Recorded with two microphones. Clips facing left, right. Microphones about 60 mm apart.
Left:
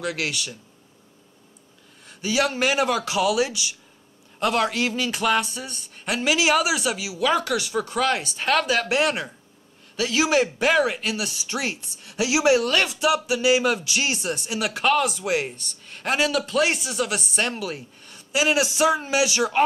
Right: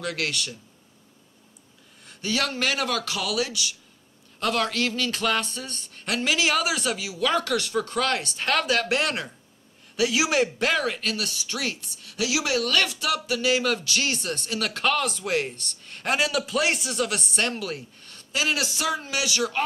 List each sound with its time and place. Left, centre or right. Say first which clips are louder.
0.0 s speech: left 1 dB; centre
2.0 s speech: left 4 dB; centre